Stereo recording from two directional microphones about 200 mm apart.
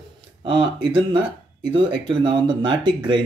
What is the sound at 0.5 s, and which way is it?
Speech, 25° right (ahead or behind).